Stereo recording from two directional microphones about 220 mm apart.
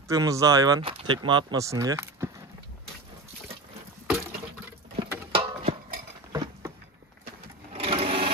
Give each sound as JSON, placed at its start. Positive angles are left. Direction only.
{"t": 0.1, "sound": "speech", "side_deg": -15}
{"t": 5.3, "sound": "a sound", "side_deg": -25}
{"t": 6.3, "sound": "patter", "side_deg": -15}
{"t": 7.7, "sound": "sewing machine", "side_deg": -25}